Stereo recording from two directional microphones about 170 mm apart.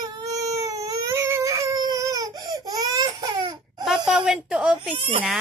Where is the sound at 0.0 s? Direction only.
20° right (ahead or behind).